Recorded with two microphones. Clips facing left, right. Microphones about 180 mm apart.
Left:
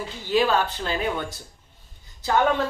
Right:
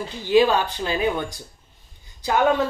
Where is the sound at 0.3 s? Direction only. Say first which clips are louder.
Right 4 dB; 15° right (ahead or behind).